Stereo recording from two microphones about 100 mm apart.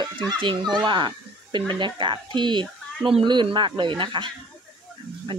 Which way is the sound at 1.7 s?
50° right (ahead or behind).